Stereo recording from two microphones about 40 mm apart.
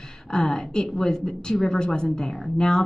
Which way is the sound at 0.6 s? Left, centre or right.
Centre.